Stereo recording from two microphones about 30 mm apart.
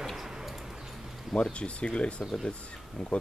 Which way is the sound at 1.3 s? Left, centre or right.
Left.